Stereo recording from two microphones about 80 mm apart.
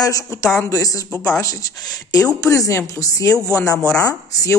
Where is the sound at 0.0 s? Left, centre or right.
Left.